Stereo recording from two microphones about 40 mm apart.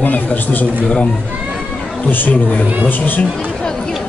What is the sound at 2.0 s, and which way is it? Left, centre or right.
Speech, left.